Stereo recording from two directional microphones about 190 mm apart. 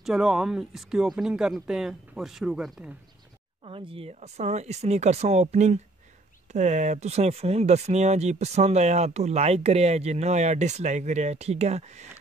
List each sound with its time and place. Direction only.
0.0 s speech: 5° right (ahead or behind)
3.6 s speech: 30° right (ahead or behind)